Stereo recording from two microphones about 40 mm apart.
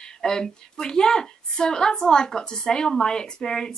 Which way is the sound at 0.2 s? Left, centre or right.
Centre.